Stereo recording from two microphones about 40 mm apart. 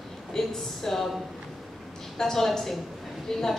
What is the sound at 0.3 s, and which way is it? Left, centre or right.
Speech, centre.